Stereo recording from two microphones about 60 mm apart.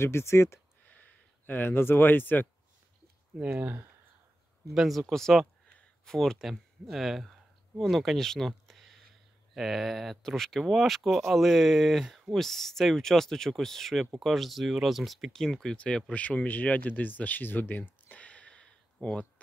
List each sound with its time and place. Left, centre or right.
0.0 s speech: left
0.8 s a sound: left
3.4 s speech: right
4.7 s speech: centre
10.6 s speech: centre
15.4 s speech: centre; by 17.8 s left
18.0 s a sound: left